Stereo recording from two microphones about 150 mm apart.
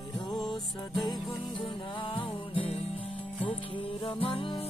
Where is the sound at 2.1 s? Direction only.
35° left (ahead or behind).